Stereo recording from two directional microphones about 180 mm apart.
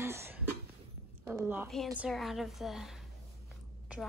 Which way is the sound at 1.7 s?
Centre (ahead or behind).